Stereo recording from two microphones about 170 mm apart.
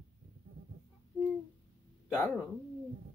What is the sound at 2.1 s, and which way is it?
Speech, 10° left (ahead or behind).